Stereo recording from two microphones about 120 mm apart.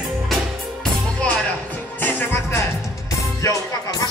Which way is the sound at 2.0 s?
15° left (ahead or behind).